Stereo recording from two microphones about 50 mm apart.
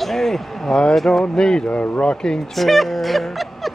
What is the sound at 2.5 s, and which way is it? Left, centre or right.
Music, centre.